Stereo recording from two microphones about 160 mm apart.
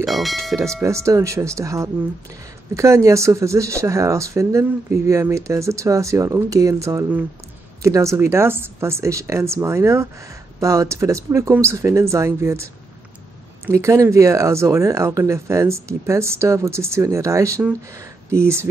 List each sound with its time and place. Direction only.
0.0 s speech: centre (ahead or behind)
0.8 s speech: 20° right (ahead or behind)
13.7 s speech: 20° right (ahead or behind)